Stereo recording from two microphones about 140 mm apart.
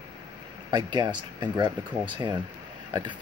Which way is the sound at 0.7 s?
35° right (ahead or behind).